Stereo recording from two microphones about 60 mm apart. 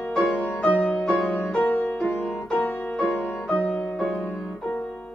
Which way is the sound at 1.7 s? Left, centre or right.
Left.